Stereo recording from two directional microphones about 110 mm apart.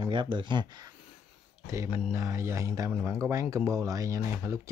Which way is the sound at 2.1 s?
25° right (ahead or behind).